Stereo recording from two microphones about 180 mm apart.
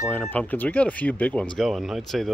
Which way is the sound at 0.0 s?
10° left (ahead or behind).